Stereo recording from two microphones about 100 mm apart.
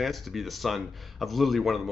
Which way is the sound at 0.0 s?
Centre (ahead or behind).